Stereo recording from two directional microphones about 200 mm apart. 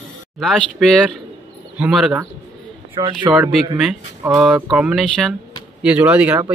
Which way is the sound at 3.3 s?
5° right (ahead or behind).